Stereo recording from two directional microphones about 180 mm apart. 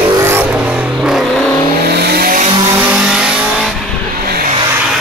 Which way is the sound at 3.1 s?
5° right (ahead or behind).